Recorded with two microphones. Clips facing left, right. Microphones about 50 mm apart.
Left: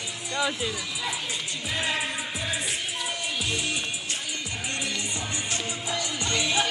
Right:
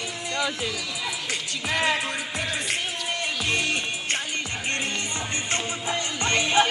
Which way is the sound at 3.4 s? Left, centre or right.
Right.